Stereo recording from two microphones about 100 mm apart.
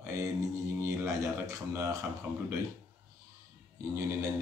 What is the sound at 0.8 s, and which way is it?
Speech, 30° right (ahead or behind).